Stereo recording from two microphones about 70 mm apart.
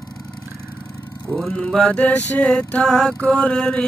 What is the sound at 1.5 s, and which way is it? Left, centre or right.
Mantra, centre.